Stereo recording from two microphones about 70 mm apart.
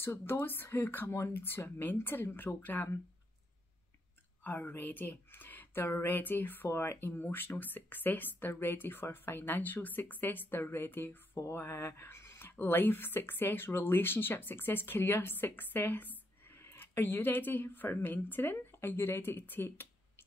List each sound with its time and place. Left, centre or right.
0.0 s speech: left
1.0 s speech: left
1.3 s speech: left
4.4 s a woman's voice: left